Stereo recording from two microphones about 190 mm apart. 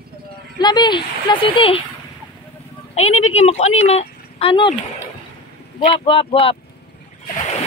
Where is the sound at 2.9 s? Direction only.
90° left.